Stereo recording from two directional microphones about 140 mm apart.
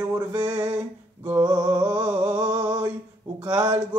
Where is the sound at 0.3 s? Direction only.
25° right (ahead or behind).